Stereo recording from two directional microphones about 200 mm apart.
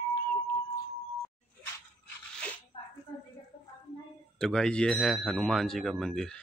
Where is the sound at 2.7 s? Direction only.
25° left (ahead or behind).